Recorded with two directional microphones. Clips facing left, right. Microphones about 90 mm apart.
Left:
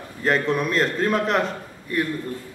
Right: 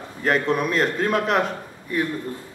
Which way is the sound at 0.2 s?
Centre (ahead or behind).